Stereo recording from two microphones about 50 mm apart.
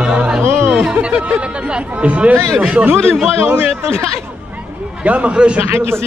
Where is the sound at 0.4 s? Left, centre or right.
Right.